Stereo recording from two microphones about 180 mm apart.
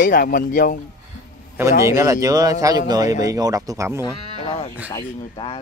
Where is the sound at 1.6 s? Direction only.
15° right (ahead or behind).